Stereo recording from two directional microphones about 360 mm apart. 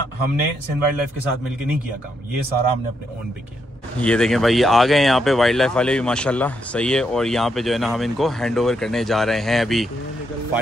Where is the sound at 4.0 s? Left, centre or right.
Centre.